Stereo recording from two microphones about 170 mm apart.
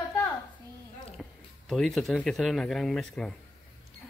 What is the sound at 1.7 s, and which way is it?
Speech, centre (ahead or behind).